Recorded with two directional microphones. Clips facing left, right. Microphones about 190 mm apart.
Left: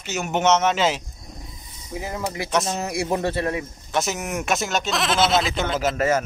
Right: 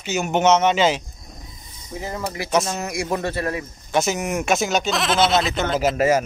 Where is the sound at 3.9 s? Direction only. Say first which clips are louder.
Right 5 dB; centre (ahead or behind).